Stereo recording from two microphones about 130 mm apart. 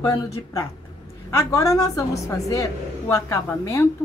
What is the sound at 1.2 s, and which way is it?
A woman's voice, 20° left (ahead or behind).